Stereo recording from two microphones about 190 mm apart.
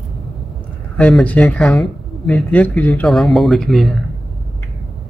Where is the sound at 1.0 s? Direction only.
5° left (ahead or behind).